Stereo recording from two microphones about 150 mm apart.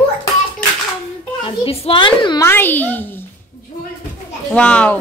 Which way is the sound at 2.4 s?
15° left (ahead or behind).